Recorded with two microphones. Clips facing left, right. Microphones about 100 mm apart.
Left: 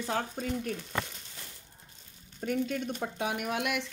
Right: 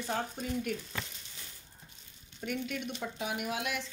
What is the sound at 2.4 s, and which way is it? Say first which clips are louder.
Speech: left 5 dB; 40° left (ahead or behind).